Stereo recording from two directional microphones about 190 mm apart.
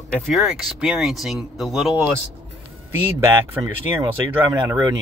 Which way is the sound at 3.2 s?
15° right (ahead or behind).